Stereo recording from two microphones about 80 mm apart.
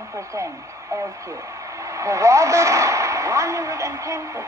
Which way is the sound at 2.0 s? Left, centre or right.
Right.